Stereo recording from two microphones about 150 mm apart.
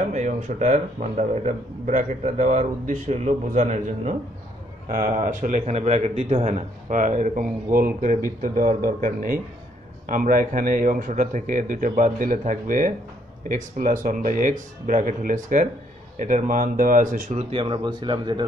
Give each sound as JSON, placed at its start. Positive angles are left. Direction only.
{"t": 0.1, "sound": "a man's voice", "side_deg": -50}
{"t": 17.3, "sound": "speech", "side_deg": -40}